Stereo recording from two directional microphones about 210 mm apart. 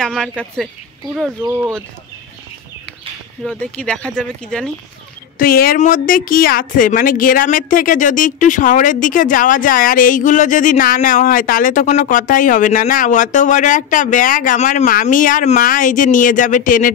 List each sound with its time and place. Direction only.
0.0 s speech: 5° left (ahead or behind)
1.4 s speech: 10° right (ahead or behind)
3.4 s speech: 5° left (ahead or behind)
5.4 s a woman's voice: 45° left (ahead or behind)